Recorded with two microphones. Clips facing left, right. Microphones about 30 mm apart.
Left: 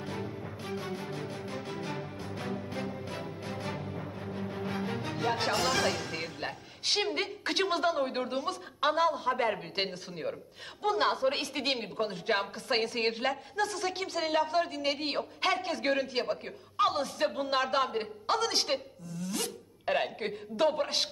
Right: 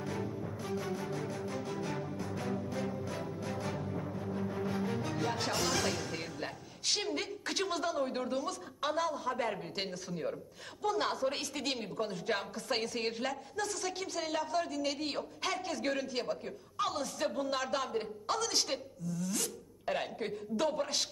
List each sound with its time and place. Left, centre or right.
0.0 s music: left
3.9 s music: left
4.2 s music: left
6.4 s a woman's voice: left